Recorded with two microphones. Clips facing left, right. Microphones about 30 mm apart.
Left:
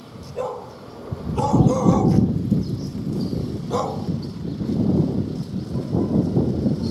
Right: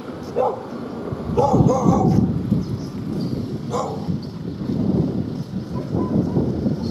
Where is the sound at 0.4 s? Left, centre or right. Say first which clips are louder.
Right 7 dB; centre.